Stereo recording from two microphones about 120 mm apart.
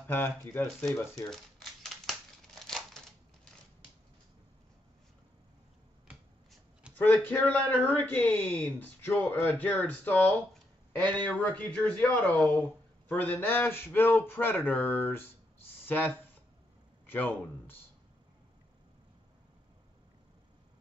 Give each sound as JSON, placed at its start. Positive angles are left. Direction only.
{"t": 0.0, "sound": "speech", "side_deg": 15}
{"t": 1.3, "sound": "typewriter", "side_deg": 0}
{"t": 2.6, "sound": "a sound", "side_deg": 5}
{"t": 7.0, "sound": "speech", "side_deg": 15}